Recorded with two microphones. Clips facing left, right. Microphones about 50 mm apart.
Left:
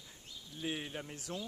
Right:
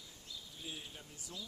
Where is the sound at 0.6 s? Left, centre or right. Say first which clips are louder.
Left 11 dB; left.